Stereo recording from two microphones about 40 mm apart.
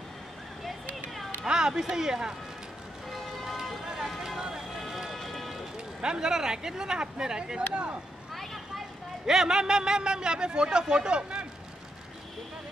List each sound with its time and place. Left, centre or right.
1.4 s speech: centre
4.7 s run: centre
5.9 s speech: right
8.3 s vehicle: centre
9.2 s a man's voice: centre